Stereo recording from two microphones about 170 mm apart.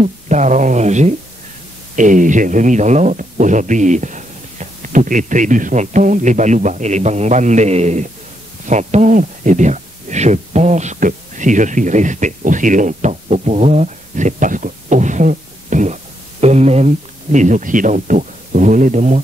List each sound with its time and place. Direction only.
0.0 s speech: 45° right (ahead or behind)